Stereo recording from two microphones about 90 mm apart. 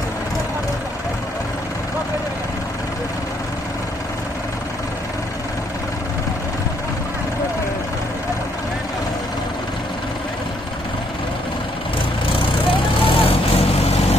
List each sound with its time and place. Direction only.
13.0 s vehicle: 90° left